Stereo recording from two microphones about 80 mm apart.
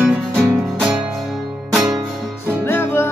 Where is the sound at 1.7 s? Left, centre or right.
Centre.